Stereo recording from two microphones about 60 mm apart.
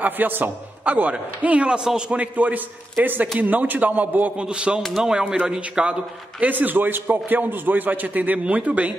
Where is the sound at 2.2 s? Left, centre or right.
Right.